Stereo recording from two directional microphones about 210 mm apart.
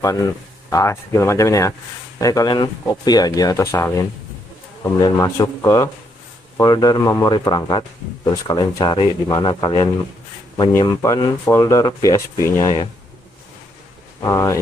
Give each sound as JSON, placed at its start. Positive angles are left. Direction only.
{"t": 0.0, "sound": "speech", "side_deg": 15}
{"t": 14.2, "sound": "speech", "side_deg": 15}